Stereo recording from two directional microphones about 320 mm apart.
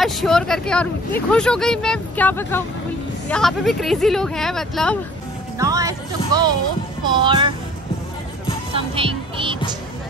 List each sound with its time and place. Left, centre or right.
0.0 s speech: centre
5.6 s speech: centre
8.7 s speech: centre